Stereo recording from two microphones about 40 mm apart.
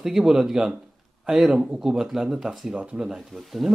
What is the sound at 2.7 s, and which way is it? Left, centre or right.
Speech, right.